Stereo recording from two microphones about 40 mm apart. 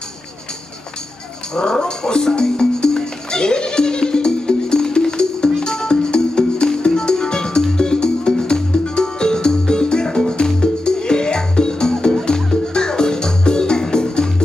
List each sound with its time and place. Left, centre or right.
1.5 s music: centre